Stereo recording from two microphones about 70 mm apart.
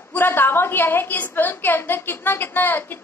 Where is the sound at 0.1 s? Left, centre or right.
Left.